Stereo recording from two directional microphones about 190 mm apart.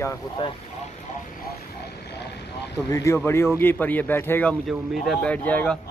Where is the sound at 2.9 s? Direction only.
15° left (ahead or behind).